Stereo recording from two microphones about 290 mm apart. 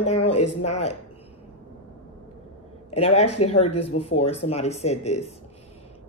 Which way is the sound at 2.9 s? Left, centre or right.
Left.